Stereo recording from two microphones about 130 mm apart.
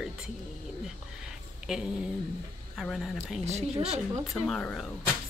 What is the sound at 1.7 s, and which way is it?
Speech, 5° right (ahead or behind).